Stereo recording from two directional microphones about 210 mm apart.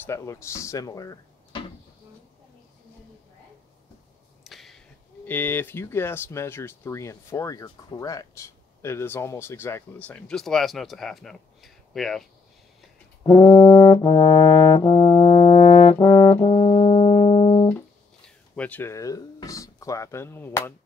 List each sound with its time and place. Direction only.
0.0 s speech: 15° left (ahead or behind)
4.5 s speech: centre (ahead or behind)
13.7 s brass instrument: 25° left (ahead or behind)
17.6 s speech: 5° left (ahead or behind)